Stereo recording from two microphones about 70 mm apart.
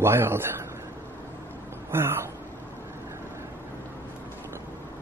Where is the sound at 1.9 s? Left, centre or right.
Right.